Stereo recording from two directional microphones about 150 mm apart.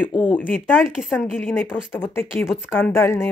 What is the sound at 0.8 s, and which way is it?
Speech, 5° right (ahead or behind).